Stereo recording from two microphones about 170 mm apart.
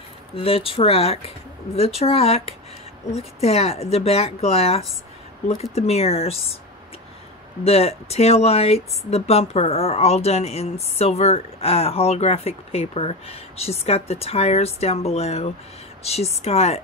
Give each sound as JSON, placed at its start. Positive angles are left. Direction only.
{"t": 0.4, "sound": "speech", "side_deg": 35}
{"t": 7.6, "sound": "speech", "side_deg": 35}